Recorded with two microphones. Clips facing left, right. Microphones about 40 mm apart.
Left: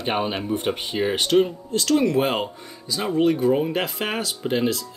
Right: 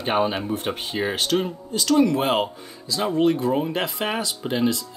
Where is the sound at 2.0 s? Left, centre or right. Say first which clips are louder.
Even; centre.